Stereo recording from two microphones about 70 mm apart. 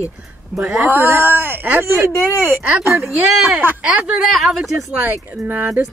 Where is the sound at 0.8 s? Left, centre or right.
Right.